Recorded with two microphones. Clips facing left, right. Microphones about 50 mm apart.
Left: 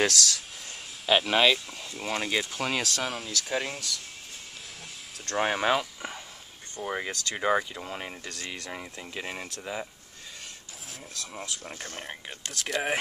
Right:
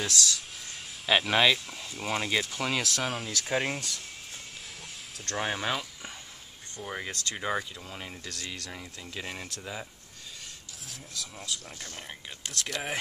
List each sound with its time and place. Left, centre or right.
0.0 s speech: left
1.0 s speech: centre
3.4 s speech: centre
5.3 s speech: left
7.7 s speech: left
12.5 s speech: centre